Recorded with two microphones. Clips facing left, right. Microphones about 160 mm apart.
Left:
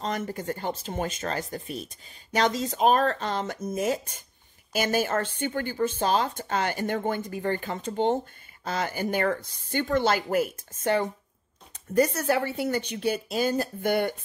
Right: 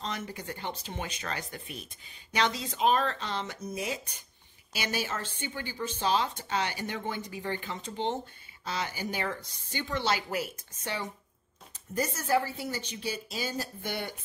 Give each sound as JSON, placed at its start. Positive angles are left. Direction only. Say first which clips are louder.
{"t": 0.0, "sound": "a woman's voice", "louder": "left 7 dB", "side_deg": 45}
{"t": 11.9, "sound": "speech", "louder": "left 5 dB", "side_deg": 65}